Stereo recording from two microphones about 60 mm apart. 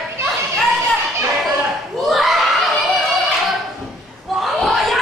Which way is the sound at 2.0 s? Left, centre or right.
Centre.